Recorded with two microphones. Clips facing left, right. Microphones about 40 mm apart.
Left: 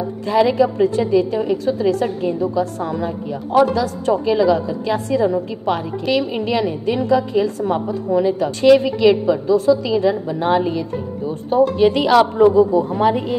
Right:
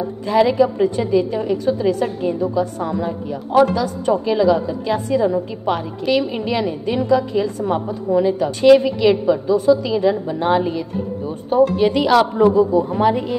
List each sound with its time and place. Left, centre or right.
0.4 s a woman's voice: centre
1.8 s a woman's voice: centre
3.6 s a woman's voice: centre
4.1 s a woman's voice: centre
11.8 s a woman's voice: centre